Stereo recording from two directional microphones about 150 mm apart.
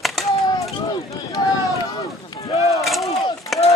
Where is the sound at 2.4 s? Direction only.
45° left (ahead or behind).